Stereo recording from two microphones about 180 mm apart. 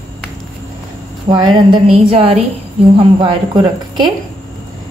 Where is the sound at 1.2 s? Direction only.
25° right (ahead or behind).